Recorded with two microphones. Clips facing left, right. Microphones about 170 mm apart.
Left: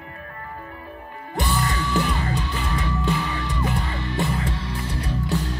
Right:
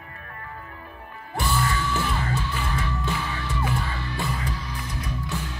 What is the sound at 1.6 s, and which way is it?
Music, 55° left (ahead or behind).